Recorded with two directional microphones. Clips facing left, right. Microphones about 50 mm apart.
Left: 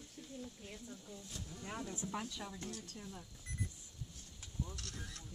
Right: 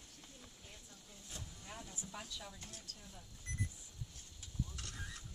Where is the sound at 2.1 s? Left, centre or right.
Left.